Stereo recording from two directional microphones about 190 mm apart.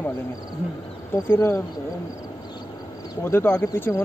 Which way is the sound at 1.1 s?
15° left (ahead or behind).